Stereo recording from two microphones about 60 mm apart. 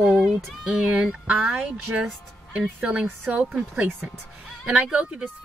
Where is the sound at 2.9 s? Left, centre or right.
Right.